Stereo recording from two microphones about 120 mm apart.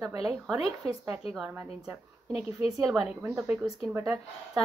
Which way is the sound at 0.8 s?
25° right (ahead or behind).